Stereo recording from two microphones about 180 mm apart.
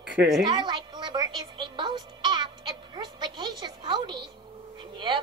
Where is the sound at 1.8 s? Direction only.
25° right (ahead or behind).